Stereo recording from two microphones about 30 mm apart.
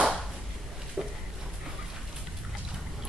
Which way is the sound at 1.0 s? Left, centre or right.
Right.